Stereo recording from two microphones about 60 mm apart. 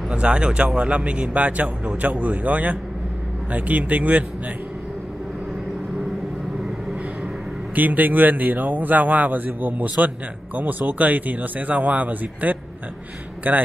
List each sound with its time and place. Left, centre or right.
0.1 s a man's voice: centre
7.7 s a man's voice: right